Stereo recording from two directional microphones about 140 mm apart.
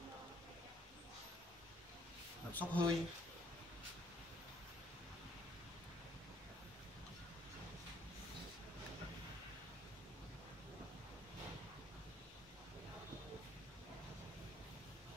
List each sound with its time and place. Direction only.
2.5 s speech: 10° left (ahead or behind)